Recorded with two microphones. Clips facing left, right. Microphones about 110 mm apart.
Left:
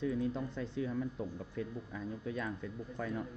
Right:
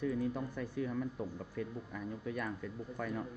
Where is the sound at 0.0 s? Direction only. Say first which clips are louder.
Left 1 dB; 20° left (ahead or behind).